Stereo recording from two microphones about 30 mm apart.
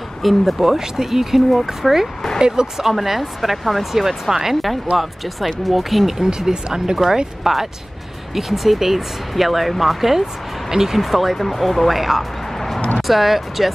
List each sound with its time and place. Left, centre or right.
0.2 s speech: centre
0.7 s speech: centre
2.4 s speech: right
2.8 s speech: centre
6.1 s speech: centre
11.0 s speech: centre
12.5 s music: centre
13.0 s speech: centre